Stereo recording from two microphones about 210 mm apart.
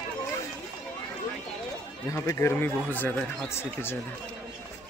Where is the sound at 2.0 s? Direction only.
15° left (ahead or behind).